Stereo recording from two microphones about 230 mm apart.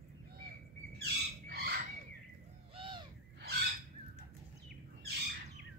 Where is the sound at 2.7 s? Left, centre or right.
Right.